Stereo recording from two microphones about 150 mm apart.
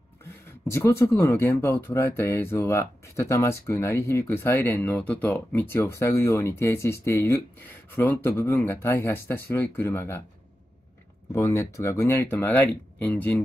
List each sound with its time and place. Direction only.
0.2 s speech: 20° left (ahead or behind)
11.3 s speech: 20° left (ahead or behind)